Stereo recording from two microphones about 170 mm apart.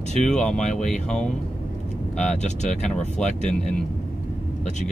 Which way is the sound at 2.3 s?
45° left (ahead or behind).